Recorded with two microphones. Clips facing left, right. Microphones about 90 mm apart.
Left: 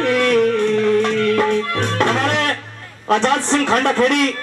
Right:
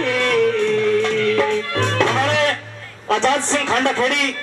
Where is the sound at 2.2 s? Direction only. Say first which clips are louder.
Right 1 dB; 50° left (ahead or behind).